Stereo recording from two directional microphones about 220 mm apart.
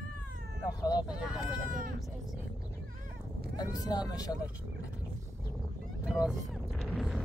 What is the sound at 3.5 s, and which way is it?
Speech, 15° left (ahead or behind).